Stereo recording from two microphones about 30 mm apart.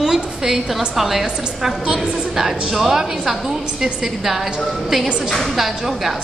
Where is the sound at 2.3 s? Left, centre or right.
Centre.